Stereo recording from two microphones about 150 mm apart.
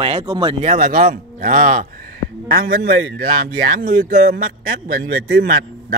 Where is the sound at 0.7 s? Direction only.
70° right (ahead or behind).